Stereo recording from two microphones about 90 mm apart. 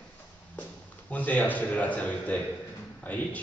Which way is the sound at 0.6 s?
15° left (ahead or behind).